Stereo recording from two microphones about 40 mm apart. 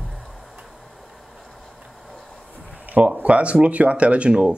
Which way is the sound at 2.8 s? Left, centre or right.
Right.